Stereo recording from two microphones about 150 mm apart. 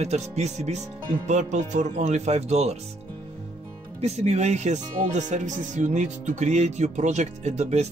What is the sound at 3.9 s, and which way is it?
Speech, 45° right (ahead or behind).